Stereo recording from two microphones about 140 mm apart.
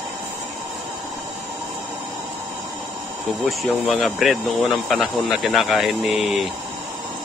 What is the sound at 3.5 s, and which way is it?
Speech, centre (ahead or behind).